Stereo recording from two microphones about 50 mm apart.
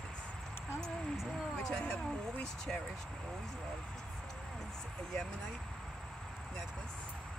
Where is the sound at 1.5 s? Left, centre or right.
Centre.